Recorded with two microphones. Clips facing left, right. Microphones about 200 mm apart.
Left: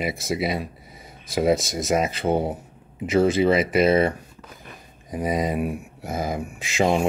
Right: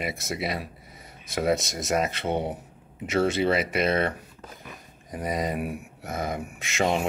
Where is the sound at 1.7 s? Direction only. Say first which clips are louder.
Left 4 dB; centre (ahead or behind).